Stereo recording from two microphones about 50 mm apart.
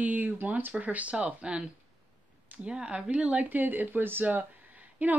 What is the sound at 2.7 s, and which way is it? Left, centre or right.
Speech, centre.